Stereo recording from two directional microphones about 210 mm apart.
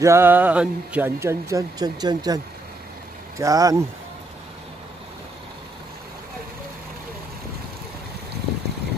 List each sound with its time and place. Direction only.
0.0 s a man's voice: 10° right (ahead or behind)